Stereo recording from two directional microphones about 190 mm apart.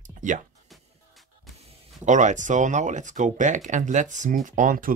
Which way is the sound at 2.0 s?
40° right (ahead or behind).